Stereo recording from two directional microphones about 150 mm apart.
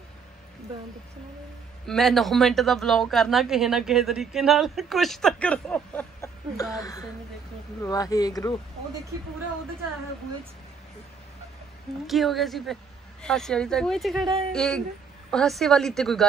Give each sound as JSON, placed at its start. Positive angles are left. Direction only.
{"t": 1.9, "sound": "a woman's voice", "side_deg": 0}
{"t": 6.5, "sound": "speech", "side_deg": 25}
{"t": 12.1, "sound": "a woman's voice", "side_deg": 0}